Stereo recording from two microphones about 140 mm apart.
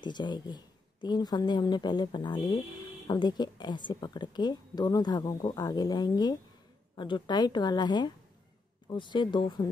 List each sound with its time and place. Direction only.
0.0 s speech: 30° left (ahead or behind)